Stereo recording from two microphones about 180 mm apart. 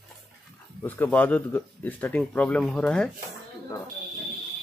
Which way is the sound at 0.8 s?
10° left (ahead or behind).